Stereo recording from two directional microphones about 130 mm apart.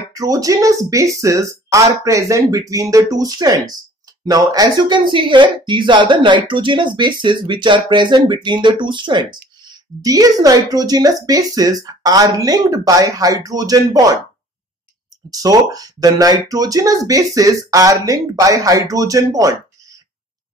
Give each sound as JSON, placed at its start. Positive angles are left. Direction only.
{"t": 0.1, "sound": "speech", "side_deg": -25}
{"t": 15.3, "sound": "speech", "side_deg": -30}